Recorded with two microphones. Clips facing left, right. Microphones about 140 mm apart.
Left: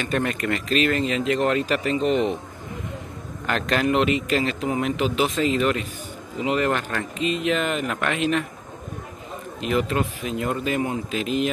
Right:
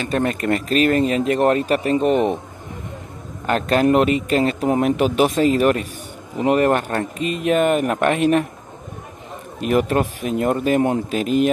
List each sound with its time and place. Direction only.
0.1 s speech: 30° right (ahead or behind); by 2.3 s 50° right (ahead or behind)
3.4 s a man's voice: 40° right (ahead or behind)
9.6 s speech: 50° right (ahead or behind)